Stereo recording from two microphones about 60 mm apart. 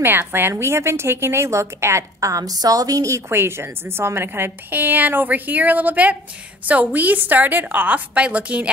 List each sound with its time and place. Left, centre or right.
0.0 s a woman's voice: right
3.3 s a woman's voice: right